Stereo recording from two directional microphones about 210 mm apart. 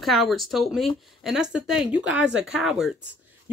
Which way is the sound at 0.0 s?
Centre (ahead or behind).